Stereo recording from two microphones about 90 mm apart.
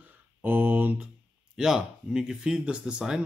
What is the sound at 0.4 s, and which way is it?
Mantra, 20° right (ahead or behind).